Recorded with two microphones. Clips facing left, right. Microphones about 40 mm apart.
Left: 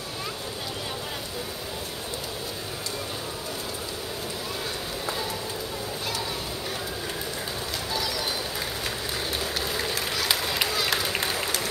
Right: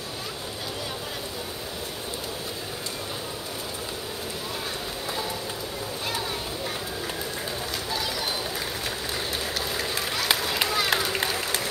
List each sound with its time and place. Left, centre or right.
9.9 s run: centre
10.3 s run: centre
10.7 s run: centre
11.0 s run: centre